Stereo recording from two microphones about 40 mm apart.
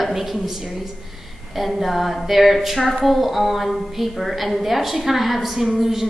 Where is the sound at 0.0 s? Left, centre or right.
Centre.